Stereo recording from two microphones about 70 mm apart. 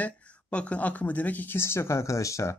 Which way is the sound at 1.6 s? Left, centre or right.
Left.